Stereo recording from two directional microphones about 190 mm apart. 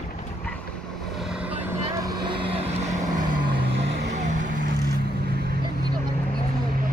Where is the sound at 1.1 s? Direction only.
5° right (ahead or behind); by 3.1 s 35° right (ahead or behind).